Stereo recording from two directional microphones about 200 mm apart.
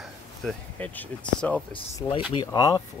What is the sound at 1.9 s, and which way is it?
Speech, 25° left (ahead or behind).